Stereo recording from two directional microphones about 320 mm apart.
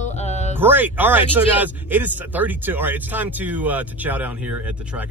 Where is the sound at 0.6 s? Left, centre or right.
Centre.